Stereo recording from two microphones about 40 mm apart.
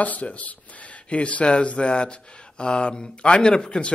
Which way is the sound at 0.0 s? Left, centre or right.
Left.